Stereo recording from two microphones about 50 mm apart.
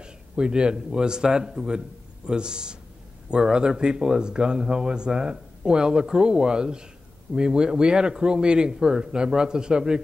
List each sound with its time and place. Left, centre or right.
0.0 s speech: centre